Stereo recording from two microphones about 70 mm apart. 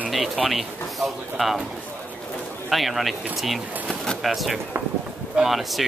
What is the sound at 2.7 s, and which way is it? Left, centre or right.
Speech, centre.